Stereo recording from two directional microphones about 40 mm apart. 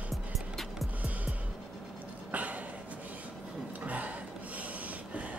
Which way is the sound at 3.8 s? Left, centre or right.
Right.